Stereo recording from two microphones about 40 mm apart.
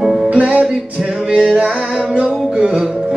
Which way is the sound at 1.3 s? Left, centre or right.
Centre.